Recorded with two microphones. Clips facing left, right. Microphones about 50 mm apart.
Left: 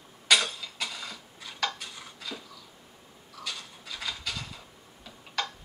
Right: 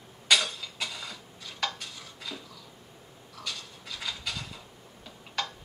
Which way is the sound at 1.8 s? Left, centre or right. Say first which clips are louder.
Left 1 dB; centre.